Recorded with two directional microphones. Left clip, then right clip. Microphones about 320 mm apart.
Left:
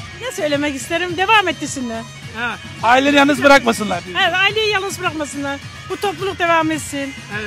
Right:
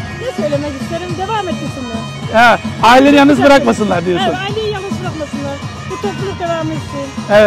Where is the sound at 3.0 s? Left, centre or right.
Left.